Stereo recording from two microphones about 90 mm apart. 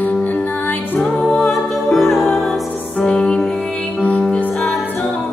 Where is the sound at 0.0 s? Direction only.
20° left (ahead or behind).